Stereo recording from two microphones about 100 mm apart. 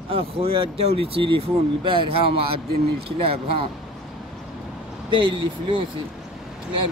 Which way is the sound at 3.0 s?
70° right (ahead or behind).